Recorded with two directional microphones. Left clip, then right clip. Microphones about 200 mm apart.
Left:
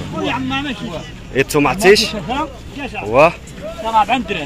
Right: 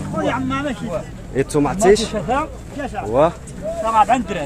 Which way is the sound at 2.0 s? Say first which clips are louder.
Left 1 dB; 10° right (ahead or behind).